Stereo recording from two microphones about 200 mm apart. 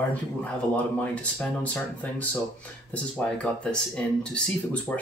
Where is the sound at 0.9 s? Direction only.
5° left (ahead or behind).